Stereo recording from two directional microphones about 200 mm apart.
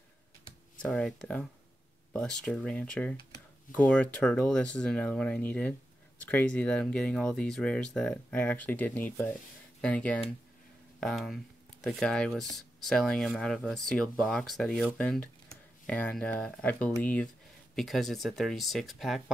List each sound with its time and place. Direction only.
0.8 s speech: centre (ahead or behind)